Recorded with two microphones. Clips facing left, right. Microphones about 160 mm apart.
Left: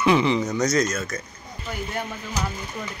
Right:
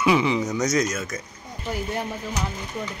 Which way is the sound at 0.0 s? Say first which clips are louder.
Left 1 dB; 10° right (ahead or behind).